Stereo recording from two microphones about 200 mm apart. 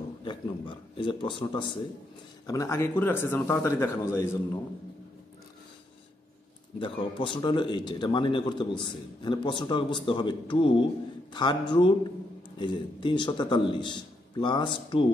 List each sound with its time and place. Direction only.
0.2 s a sound: 25° left (ahead or behind)
2.4 s a man's voice: 15° left (ahead or behind)
6.8 s a man's voice: 25° left (ahead or behind)